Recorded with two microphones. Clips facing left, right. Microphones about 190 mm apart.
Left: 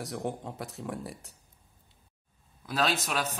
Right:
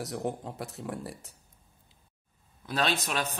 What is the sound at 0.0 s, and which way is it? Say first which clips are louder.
A man's voice: right 1 dB; centre (ahead or behind).